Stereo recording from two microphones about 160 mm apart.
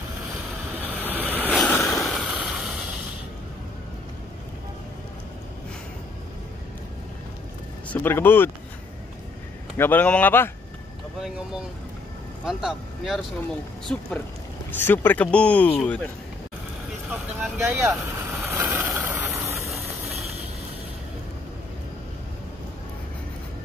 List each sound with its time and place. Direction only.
0.8 s vehicle: 10° right (ahead or behind)
1.6 s a sound: 5° left (ahead or behind)
7.9 s speech: 15° left (ahead or behind)
9.8 s speech: 10° left (ahead or behind)
12.4 s speech: 5° right (ahead or behind)
13.9 s speech: 10° left (ahead or behind)
17.1 s speech: 15° right (ahead or behind)
18.4 s vehicle: 10° right (ahead or behind)